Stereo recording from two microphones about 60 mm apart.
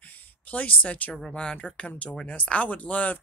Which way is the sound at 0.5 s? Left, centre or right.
Left.